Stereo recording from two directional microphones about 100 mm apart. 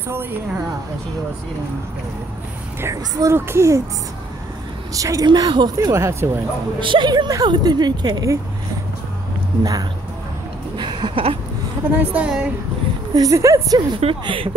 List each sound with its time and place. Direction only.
0.1 s a child's voice: 20° right (ahead or behind)
2.8 s a child's voice: 30° right (ahead or behind)
4.9 s speech: 35° right (ahead or behind)
5.2 s speech: 45° right (ahead or behind); by 6.4 s 25° right (ahead or behind)
6.8 s speech: 55° right (ahead or behind)
9.6 s speech: 35° right (ahead or behind)
10.8 s a sound: 50° right (ahead or behind)
12.0 s a woman's voice: 15° right (ahead or behind)
13.1 s speech: 35° right (ahead or behind)
13.7 s a woman's voice: 55° right (ahead or behind)